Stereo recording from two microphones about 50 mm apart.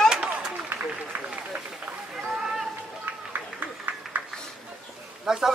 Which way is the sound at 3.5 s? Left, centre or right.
Right.